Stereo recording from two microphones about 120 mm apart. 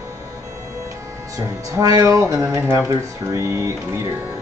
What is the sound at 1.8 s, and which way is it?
Speech, 30° right (ahead or behind).